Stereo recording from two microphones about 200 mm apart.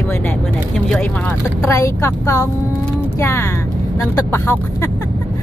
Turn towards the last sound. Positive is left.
turn(degrees=10)  # may be behind; listen again after turning